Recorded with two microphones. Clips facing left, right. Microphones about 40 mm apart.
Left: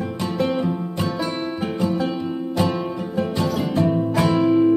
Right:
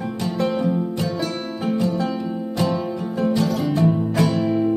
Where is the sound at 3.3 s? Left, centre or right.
Centre.